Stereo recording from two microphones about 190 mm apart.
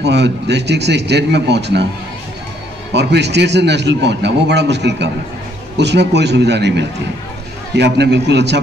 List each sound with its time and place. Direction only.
0.0 s a man's voice: 65° right (ahead or behind)
2.9 s a man's voice: 65° right (ahead or behind)